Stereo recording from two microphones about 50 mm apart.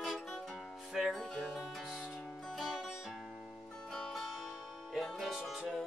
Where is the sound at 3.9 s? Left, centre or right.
Centre.